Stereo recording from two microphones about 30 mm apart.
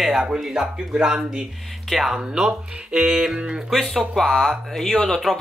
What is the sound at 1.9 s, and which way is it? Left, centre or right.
Speech, centre.